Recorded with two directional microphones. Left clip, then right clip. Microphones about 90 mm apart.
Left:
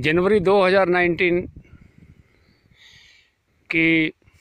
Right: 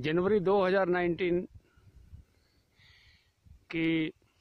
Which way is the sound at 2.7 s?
25° left (ahead or behind).